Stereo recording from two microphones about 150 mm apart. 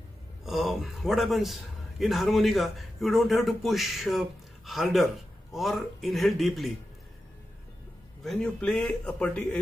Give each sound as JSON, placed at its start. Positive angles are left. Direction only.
{"t": 0.5, "sound": "a man's voice", "side_deg": 0}
{"t": 8.2, "sound": "a man's voice", "side_deg": 5}